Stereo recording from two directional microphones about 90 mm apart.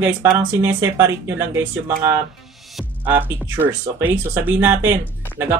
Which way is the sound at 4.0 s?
20° right (ahead or behind).